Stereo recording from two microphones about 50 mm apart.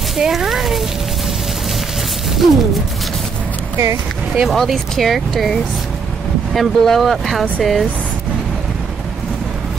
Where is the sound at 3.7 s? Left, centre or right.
Right.